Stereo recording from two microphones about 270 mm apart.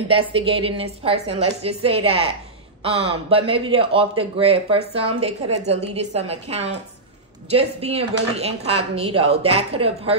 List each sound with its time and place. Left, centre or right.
0.1 s speech: centre